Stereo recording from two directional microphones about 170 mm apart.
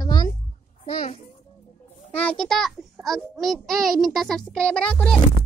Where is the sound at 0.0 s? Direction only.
25° left (ahead or behind).